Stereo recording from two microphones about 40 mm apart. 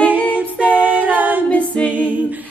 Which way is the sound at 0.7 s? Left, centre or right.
Right.